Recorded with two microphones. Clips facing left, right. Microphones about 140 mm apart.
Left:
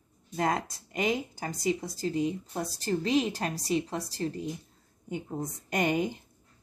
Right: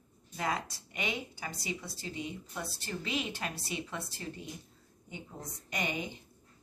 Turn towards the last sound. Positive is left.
turn(degrees=45)  # may be behind; listen again after turning